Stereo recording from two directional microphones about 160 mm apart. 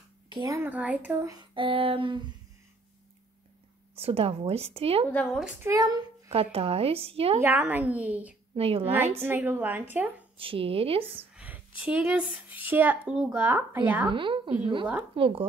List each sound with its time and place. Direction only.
0.3 s a woman's voice: 30° right (ahead or behind)
0.6 s speech: 10° right (ahead or behind)
1.3 s speech: 30° right (ahead or behind)
3.9 s speech: 35° right (ahead or behind)
5.1 s speech: 10° left (ahead or behind)
5.4 s speech: 15° right (ahead or behind)
6.3 s speech: 40° right (ahead or behind)
7.3 s speech: 15° right (ahead or behind)
8.5 s speech: 40° right (ahead or behind)
8.9 s speech: 15° right (ahead or behind)
10.3 s speech: 35° right (ahead or behind)
11.1 s a sound: 10° right (ahead or behind)
11.8 s speech: 10° right (ahead or behind)
14.1 s speech: 30° right (ahead or behind)